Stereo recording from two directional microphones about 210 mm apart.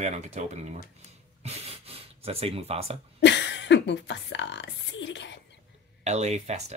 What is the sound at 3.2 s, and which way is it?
Speech, 55° left (ahead or behind).